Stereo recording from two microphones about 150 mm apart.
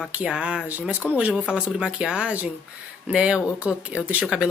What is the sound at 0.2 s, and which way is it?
Speech, 5° right (ahead or behind).